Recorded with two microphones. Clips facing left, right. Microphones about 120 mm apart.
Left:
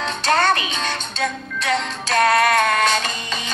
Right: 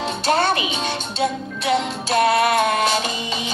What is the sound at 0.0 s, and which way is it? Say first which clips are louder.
Music: even; 10° right (ahead or behind).